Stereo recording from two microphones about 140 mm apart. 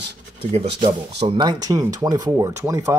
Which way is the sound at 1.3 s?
30° right (ahead or behind).